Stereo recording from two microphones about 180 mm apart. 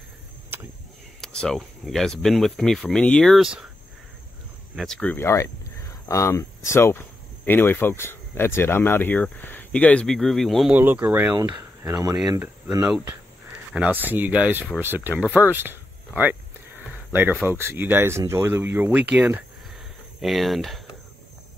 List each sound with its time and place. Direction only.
1.2 s speech: 5° left (ahead or behind)
4.7 s speech: 5° left (ahead or behind)
10.8 s speech: 10° right (ahead or behind)
11.8 s speech: 20° right (ahead or behind)
16.2 s a sound: 10° right (ahead or behind)
17.5 s speech: 10° right (ahead or behind)